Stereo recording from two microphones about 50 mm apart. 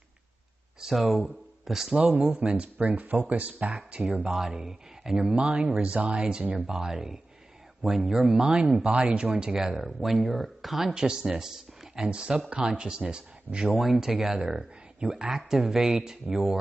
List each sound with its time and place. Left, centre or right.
0.7 s speech: centre
2.3 s speech: right
4.6 s speech: centre
5.5 s speech: centre
13.7 s speech: centre